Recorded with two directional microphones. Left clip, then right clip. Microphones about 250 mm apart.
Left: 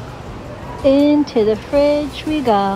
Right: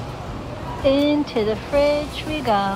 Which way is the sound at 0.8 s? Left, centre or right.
Right.